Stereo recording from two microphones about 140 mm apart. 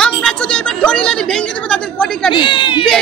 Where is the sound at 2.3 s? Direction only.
35° left (ahead or behind).